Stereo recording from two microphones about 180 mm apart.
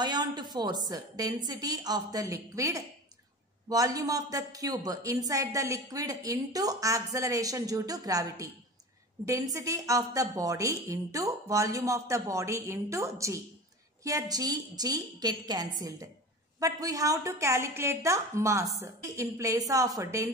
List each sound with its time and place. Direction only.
0.0 s a woman's voice: 20° right (ahead or behind)